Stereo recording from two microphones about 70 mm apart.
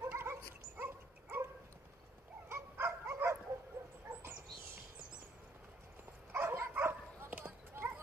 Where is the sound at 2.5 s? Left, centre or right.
Right.